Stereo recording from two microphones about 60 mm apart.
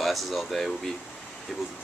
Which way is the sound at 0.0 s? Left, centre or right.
Centre.